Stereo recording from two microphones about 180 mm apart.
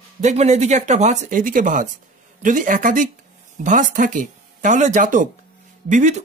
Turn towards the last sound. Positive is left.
turn(degrees=-40)  # may be behind; listen again after turning